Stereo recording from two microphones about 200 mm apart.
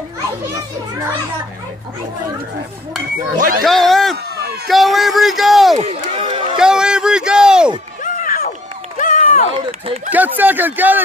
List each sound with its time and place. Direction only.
3.3 s speech: 45° right (ahead or behind)
3.6 s speech: centre (ahead or behind)
5.9 s a sound: 25° right (ahead or behind)
6.6 s a sound: 5° right (ahead or behind)
8.0 s run: 40° left (ahead or behind)
10.0 s speech: 10° right (ahead or behind)